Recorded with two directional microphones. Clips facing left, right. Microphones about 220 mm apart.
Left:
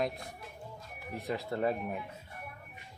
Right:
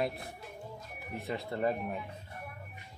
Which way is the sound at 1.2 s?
Centre (ahead or behind).